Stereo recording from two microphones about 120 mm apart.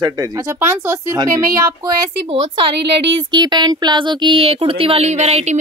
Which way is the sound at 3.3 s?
35° right (ahead or behind).